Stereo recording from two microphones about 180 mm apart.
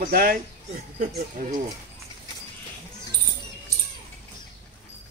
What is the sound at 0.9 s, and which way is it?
Speech, 45° right (ahead or behind).